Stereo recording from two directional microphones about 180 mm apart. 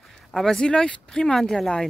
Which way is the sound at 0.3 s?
5° left (ahead or behind).